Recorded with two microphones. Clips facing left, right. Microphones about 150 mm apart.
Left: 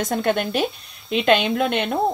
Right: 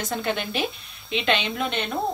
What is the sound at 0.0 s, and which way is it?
A woman's voice, 50° left (ahead or behind).